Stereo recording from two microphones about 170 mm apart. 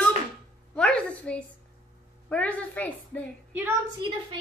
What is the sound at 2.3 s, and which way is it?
A woman's voice, 10° left (ahead or behind).